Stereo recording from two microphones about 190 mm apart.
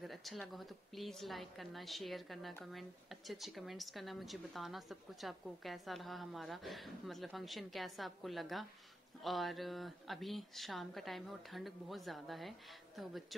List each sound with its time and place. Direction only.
0.0 s speech: centre (ahead or behind)